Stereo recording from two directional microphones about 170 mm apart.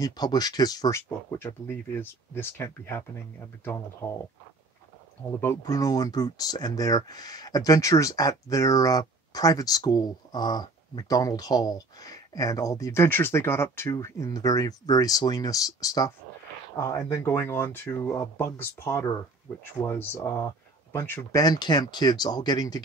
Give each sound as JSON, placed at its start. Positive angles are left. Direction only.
{"t": 0.0, "sound": "speech", "side_deg": 25}
{"t": 5.4, "sound": "speech", "side_deg": 20}